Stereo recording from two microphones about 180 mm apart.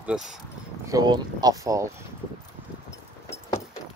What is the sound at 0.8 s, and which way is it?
Speech, 20° right (ahead or behind).